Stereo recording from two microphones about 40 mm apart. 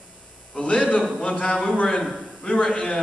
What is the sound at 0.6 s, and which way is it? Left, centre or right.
A man's voice, left.